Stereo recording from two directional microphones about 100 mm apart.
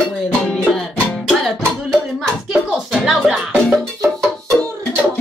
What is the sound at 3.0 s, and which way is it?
Music, 5° right (ahead or behind).